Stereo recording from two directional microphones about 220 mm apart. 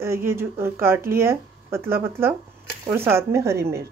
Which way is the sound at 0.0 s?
10° right (ahead or behind).